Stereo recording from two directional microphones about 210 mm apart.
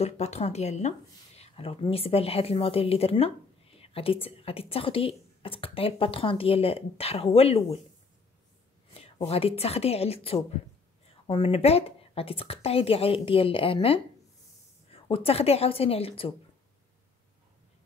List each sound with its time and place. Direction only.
0.0 s speech: 30° left (ahead or behind)
8.9 s a woman's voice: 30° left (ahead or behind)